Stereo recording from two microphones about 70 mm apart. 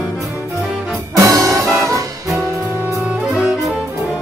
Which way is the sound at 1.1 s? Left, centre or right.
Right.